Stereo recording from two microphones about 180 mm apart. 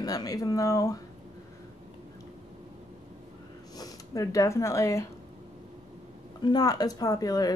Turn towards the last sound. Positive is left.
turn(degrees=20)  # may be behind; listen again after turning